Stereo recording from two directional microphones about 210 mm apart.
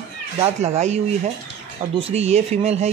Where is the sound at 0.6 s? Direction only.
30° right (ahead or behind).